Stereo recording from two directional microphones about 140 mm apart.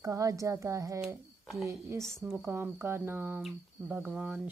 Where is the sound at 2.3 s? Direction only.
15° right (ahead or behind).